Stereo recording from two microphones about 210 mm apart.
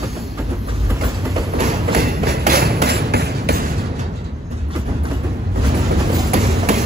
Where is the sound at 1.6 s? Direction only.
40° right (ahead or behind).